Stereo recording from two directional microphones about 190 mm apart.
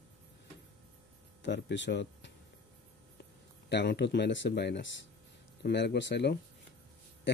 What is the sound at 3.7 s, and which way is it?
Speech, 65° left (ahead or behind).